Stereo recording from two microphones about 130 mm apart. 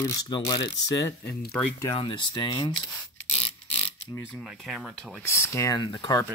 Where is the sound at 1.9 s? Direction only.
40° left (ahead or behind).